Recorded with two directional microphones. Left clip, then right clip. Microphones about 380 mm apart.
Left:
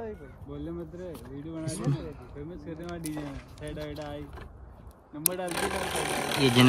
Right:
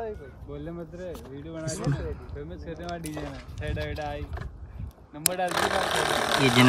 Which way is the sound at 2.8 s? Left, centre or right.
Right.